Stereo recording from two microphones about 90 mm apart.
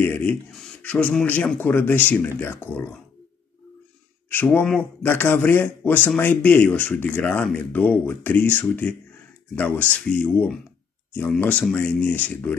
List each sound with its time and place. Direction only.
0.0 s speech: 25° left (ahead or behind)
0.5 s a sound: 15° left (ahead or behind)
1.2 s speech: 20° left (ahead or behind)
4.5 s speech: 10° left (ahead or behind)
5.0 s speech: 20° left (ahead or behind)